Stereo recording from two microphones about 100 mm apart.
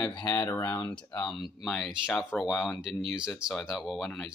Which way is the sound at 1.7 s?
5° right (ahead or behind).